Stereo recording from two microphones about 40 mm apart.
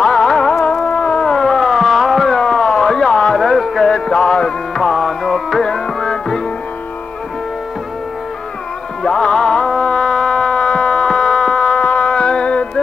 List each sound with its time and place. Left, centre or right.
0.0 s music: left; by 2.2 s centre
2.2 s a sound: centre
3.3 s music: centre
9.0 s music: left